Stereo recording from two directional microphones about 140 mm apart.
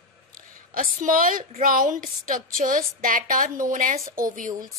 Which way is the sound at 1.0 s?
80° right.